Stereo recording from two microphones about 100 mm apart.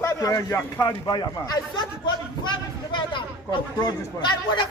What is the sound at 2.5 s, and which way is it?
A man's voice, 50° left (ahead or behind).